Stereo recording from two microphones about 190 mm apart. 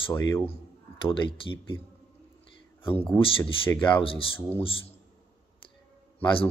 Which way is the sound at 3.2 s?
30° left (ahead or behind).